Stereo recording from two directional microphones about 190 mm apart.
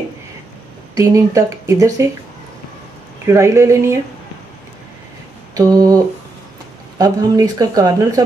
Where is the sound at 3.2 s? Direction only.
15° right (ahead or behind).